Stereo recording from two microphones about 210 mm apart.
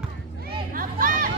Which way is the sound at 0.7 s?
40° right (ahead or behind).